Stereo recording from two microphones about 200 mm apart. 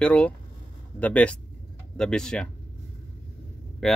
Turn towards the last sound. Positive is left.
turn(degrees=0)  # may be behind; listen again after turning